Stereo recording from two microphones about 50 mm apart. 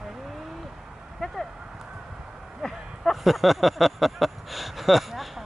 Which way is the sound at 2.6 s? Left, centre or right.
Centre.